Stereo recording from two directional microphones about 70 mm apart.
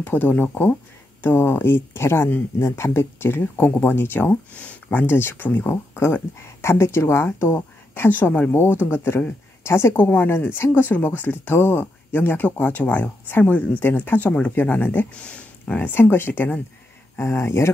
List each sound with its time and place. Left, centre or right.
0.0 s speech: left
15.9 s speech: left
17.2 s speech: left